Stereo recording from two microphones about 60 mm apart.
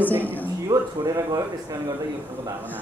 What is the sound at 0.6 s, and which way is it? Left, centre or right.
Speech, right.